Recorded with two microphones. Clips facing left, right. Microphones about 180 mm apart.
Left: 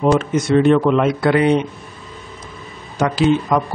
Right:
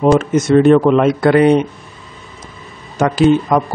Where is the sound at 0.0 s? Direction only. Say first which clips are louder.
Right 4 dB; 45° right (ahead or behind).